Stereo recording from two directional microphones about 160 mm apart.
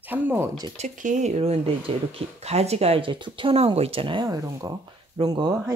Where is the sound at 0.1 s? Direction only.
15° right (ahead or behind).